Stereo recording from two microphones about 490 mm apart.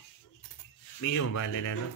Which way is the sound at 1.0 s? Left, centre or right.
Left.